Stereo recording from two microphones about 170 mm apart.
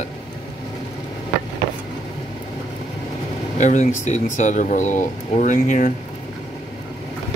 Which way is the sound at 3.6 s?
45° left (ahead or behind).